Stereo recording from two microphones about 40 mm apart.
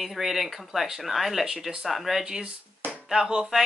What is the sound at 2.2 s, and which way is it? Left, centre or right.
Speech, centre.